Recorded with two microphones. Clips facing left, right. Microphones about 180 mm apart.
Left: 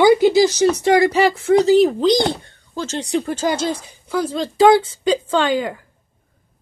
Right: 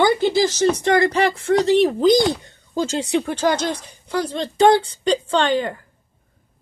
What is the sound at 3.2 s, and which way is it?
Speech, 5° left (ahead or behind).